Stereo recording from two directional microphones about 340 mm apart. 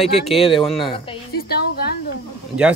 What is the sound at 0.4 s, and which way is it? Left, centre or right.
Speech, centre.